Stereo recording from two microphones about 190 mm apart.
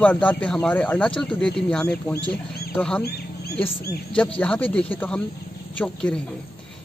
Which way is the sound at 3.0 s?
55° left (ahead or behind).